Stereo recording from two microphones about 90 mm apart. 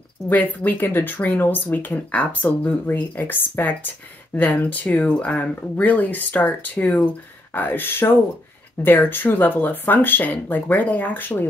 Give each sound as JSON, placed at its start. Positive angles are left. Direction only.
{"t": 0.3, "sound": "speech", "side_deg": 20}